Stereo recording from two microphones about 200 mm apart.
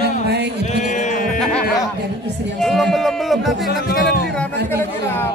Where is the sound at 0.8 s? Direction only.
40° left (ahead or behind).